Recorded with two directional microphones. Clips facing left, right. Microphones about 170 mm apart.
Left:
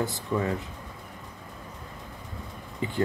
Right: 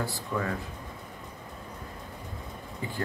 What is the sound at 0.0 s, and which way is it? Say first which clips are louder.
Speech: left 4 dB; 20° left (ahead or behind).